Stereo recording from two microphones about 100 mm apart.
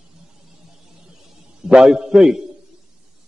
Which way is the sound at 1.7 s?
5° right (ahead or behind).